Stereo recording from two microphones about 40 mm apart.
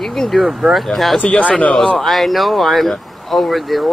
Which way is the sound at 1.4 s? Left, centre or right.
Left.